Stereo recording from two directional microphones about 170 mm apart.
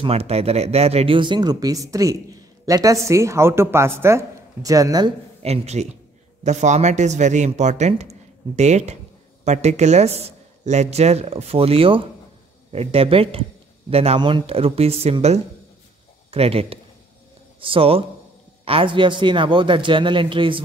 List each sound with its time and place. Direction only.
0.0 s a woman's voice: 35° right (ahead or behind); by 5.1 s 20° right (ahead or behind)
5.4 s speech: 40° right (ahead or behind)